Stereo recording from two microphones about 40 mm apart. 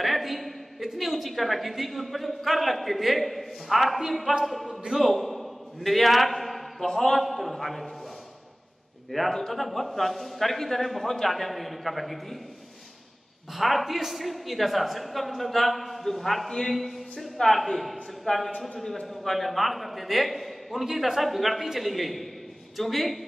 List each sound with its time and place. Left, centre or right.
0.0 s a sound: centre
0.9 s a woman's voice: centre
4.6 s speech: centre
5.1 s a sound: centre
6.9 s a woman's voice: centre
9.1 s a woman's voice: centre
13.5 s a woman's voice: centre